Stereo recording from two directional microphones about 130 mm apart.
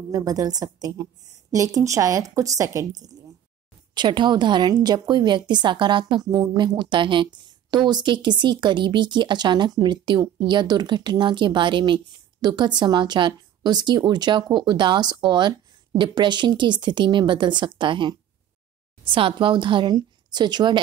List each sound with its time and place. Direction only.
0.1 s a woman's voice: 25° right (ahead or behind)